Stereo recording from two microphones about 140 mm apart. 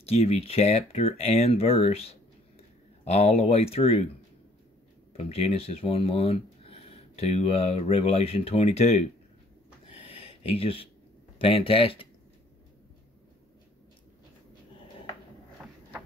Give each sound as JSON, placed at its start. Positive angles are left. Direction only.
{"t": 0.0, "sound": "speech", "side_deg": 45}
{"t": 5.1, "sound": "speech", "side_deg": 45}
{"t": 9.8, "sound": "a sound", "side_deg": 40}
{"t": 11.3, "sound": "speech", "side_deg": 40}